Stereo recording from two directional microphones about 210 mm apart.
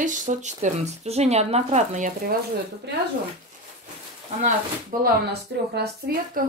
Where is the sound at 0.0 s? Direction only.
35° right (ahead or behind).